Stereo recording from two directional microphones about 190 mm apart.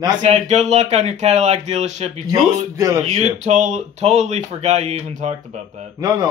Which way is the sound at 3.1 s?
35° right (ahead or behind).